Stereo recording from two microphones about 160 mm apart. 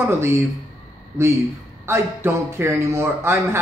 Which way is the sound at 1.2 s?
15° right (ahead or behind).